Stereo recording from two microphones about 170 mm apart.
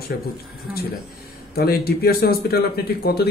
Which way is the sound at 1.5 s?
65° left (ahead or behind).